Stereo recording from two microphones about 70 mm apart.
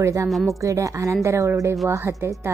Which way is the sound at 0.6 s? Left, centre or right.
Right.